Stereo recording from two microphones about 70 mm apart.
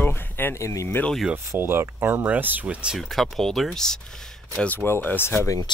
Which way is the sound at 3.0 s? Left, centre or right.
Centre.